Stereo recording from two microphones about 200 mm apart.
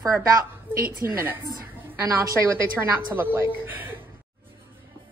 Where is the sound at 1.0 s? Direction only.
10° right (ahead or behind).